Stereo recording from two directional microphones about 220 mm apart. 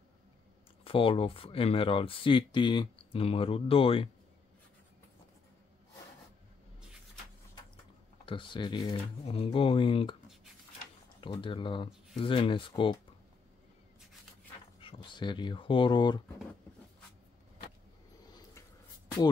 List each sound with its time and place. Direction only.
0.8 s speech: 25° left (ahead or behind)
8.3 s speech: 20° left (ahead or behind)
11.1 s speech: 20° left (ahead or behind)
14.8 s speech: 20° left (ahead or behind)